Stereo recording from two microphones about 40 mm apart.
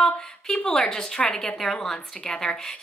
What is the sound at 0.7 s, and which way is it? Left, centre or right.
A woman's voice, centre.